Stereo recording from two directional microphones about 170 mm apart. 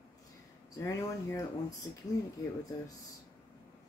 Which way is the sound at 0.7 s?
20° left (ahead or behind).